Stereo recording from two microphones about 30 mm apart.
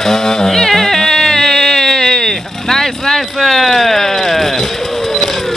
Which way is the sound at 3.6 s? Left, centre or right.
Centre.